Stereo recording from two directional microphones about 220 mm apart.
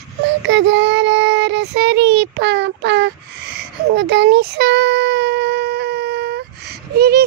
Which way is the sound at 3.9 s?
50° right (ahead or behind).